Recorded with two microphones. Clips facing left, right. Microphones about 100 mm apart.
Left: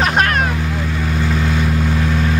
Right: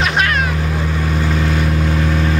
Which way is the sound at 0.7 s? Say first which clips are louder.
Right 1 dB; 15° right (ahead or behind).